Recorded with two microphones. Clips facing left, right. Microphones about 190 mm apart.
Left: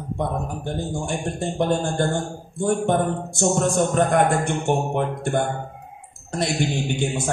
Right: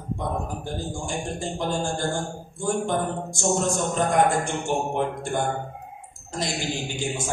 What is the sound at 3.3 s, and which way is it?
A man's voice, 60° left (ahead or behind).